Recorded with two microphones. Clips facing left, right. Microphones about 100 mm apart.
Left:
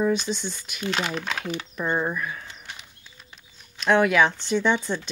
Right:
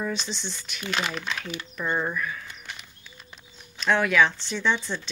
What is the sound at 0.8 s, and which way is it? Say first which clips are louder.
Speech: left 2 dB; 20° left (ahead or behind).